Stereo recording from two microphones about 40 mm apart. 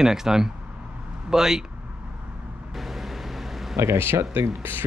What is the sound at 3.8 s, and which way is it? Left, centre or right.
Speech, right.